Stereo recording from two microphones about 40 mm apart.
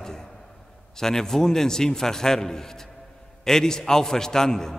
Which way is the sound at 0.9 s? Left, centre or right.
Centre.